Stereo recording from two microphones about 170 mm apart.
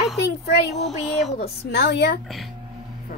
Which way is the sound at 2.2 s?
Centre (ahead or behind).